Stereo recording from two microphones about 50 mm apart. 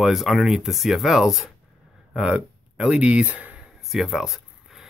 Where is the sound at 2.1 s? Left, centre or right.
Centre.